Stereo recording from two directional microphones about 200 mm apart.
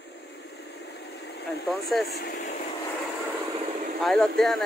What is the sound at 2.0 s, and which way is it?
Speech, 50° left (ahead or behind).